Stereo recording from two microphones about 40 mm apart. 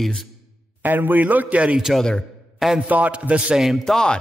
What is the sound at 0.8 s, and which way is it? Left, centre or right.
A man's voice, right.